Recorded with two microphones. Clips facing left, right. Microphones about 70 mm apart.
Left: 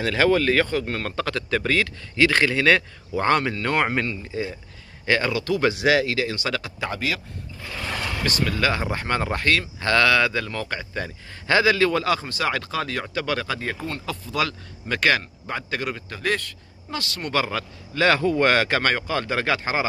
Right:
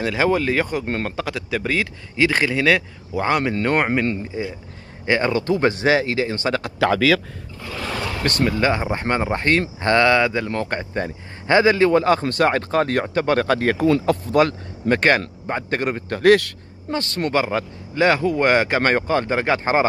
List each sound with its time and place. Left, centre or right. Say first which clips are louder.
0.0 s speech: even; centre; by 6.6 s right
6.8 s speech: right 13 dB; right
8.2 s speech: right 5 dB; right
8.5 s speech: right 5 dB; right
10.5 s speech: right 5 dB; right
12.2 s speech: right 7 dB; right
13.5 s speech: right 11 dB; right
16.2 s speech: right 12 dB; right
16.9 s speech: right 6 dB; right
17.3 s speech: right 3 dB; right